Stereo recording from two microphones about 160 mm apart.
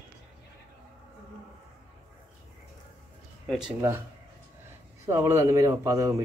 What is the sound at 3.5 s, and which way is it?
Speech, 5° right (ahead or behind).